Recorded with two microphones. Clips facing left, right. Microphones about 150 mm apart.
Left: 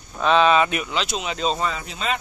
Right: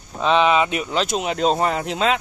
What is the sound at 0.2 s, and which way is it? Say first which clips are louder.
Speech: even; 20° right (ahead or behind).